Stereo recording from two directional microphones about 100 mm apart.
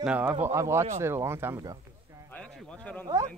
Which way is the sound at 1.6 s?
35° right (ahead or behind).